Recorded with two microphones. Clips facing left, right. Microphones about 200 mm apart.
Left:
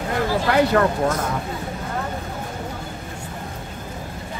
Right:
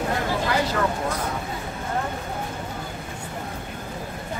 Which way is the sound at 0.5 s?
60° left (ahead or behind).